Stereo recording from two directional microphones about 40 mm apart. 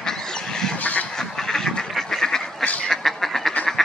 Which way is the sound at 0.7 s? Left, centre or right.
Left.